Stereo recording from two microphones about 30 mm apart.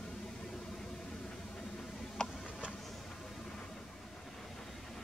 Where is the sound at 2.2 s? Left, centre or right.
Left.